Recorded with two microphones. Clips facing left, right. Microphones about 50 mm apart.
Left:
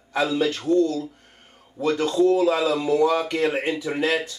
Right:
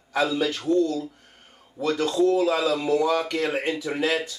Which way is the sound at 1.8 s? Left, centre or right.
Centre.